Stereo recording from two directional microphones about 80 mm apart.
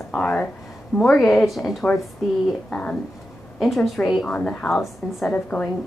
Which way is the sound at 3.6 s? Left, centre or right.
Centre.